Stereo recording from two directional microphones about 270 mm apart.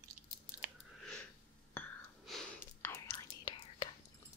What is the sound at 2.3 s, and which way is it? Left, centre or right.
Whispering, centre.